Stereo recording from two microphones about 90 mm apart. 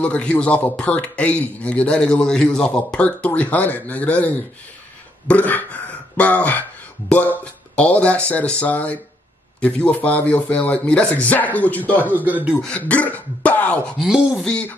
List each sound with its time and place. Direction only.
0.0 s a man's voice: 10° left (ahead or behind)
7.7 s a man's voice: 15° left (ahead or behind)
12.1 s a man's voice: 20° right (ahead or behind)
12.6 s speech: 15° left (ahead or behind)
13.9 s speech: centre (ahead or behind)
14.4 s a man's voice: 10° left (ahead or behind)